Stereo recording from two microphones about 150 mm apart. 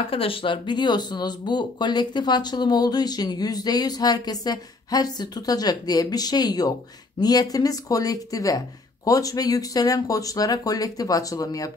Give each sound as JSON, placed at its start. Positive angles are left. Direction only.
{"t": 0.0, "sound": "speech", "side_deg": 35}